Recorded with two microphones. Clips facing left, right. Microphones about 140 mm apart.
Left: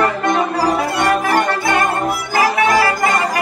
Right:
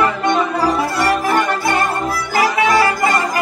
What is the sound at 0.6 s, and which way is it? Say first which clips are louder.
Music: left 1 dB; 20° left (ahead or behind).